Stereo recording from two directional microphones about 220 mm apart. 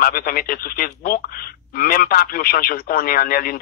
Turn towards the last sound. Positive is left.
turn(degrees=40)  # may be behind; listen again after turning